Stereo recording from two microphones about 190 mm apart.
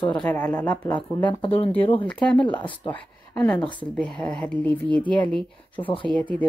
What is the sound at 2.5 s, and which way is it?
Speech, 25° left (ahead or behind).